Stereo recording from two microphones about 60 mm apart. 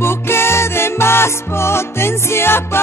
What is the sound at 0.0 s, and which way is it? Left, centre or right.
Music, left.